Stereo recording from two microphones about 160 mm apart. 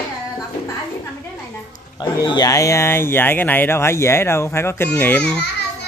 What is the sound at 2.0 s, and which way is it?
Speech, 25° left (ahead or behind).